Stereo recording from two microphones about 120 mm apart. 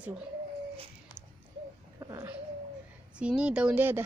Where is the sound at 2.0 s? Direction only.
30° right (ahead or behind).